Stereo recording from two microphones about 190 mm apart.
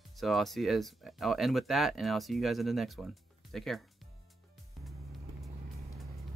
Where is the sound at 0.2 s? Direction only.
Centre (ahead or behind).